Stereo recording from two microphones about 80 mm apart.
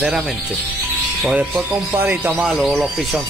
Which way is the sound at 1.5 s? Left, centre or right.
Right.